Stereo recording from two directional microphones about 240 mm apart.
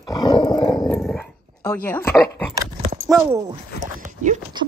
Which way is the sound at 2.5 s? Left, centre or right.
Right.